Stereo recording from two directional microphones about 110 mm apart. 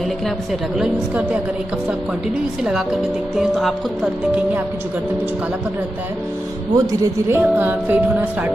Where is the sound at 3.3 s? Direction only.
5° right (ahead or behind).